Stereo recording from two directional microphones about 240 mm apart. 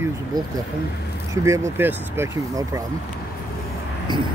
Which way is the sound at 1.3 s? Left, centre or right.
Centre.